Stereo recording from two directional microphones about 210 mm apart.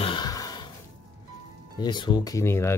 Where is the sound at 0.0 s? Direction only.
20° left (ahead or behind).